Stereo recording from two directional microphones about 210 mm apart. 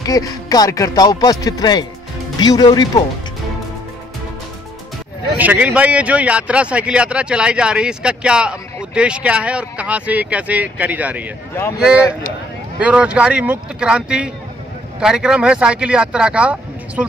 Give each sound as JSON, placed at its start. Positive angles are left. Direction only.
{"t": 0.0, "sound": "speech", "side_deg": 15}
{"t": 5.4, "sound": "a man's voice", "side_deg": -5}
{"t": 11.5, "sound": "speech", "side_deg": 10}
{"t": 12.8, "sound": "a man's voice", "side_deg": -5}